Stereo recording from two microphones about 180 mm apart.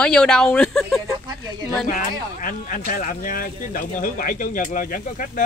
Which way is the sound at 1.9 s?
50° left (ahead or behind).